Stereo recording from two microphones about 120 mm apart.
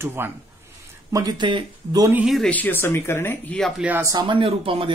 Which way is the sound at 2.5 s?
15° left (ahead or behind).